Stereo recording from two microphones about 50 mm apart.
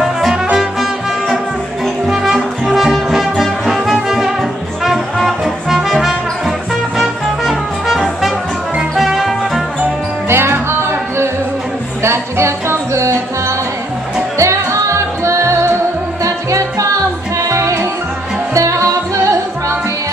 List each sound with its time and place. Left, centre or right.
0.0 s music: centre
2.0 s music: centre
10.2 s music: right
16.3 s music: right